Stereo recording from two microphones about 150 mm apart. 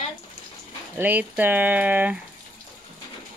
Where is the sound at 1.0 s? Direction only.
10° right (ahead or behind).